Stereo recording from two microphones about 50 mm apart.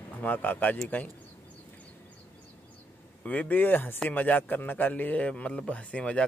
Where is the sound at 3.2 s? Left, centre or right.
Left.